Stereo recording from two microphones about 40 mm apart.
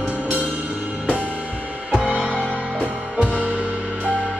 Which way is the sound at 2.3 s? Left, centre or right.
Left.